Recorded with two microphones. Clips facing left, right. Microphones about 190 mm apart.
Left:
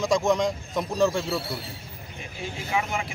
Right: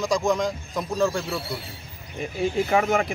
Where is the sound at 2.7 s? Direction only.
50° right (ahead or behind).